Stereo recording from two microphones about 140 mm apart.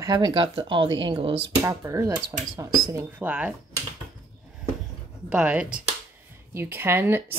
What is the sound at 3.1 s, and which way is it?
Speech, 10° right (ahead or behind).